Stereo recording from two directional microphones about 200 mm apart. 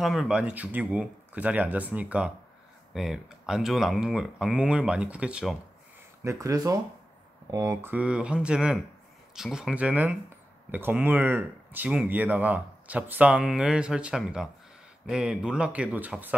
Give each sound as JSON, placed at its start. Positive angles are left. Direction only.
{"t": 0.0, "sound": "speech", "side_deg": 0}
{"t": 6.2, "sound": "speech", "side_deg": -15}